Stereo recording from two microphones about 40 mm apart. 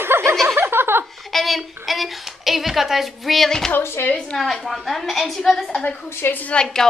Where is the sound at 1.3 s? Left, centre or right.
Centre.